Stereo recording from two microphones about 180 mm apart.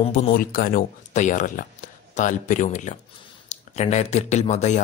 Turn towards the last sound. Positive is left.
turn(degrees=40)  # may be behind; listen again after turning